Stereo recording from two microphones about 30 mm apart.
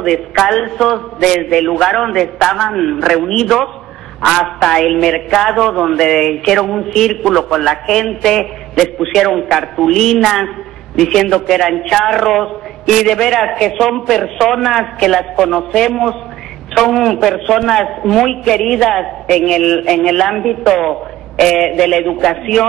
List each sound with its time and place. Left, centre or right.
0.0 s a man's voice: centre